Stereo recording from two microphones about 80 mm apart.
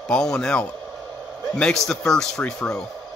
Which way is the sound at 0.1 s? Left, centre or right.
Centre.